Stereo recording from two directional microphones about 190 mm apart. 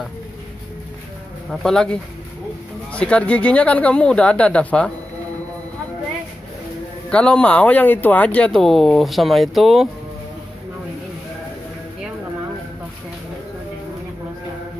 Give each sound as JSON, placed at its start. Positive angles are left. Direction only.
{"t": 1.5, "sound": "speech", "side_deg": 0}
{"t": 7.1, "sound": "speech", "side_deg": 5}